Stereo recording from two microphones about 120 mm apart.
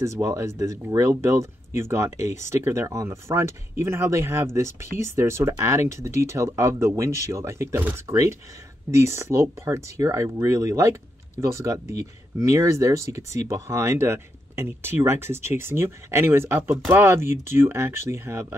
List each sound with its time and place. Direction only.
0.0 s speech: 25° right (ahead or behind)